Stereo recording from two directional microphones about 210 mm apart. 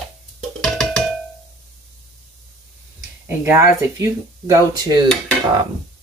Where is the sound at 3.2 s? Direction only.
10° right (ahead or behind).